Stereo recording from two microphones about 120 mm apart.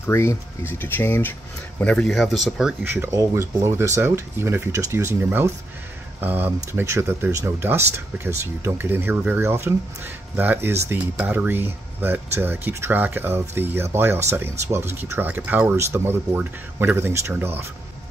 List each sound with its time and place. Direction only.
0.0 s speech: 20° left (ahead or behind); by 2.7 s centre (ahead or behind)
2.8 s speech: 15° right (ahead or behind)